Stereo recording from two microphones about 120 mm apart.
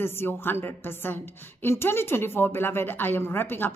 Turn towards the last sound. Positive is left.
turn(degrees=15)  # may be behind; listen again after turning